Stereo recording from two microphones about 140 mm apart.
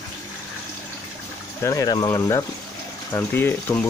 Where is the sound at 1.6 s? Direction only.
25° left (ahead or behind).